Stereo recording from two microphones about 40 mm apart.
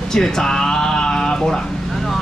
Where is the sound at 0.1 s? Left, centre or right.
Centre.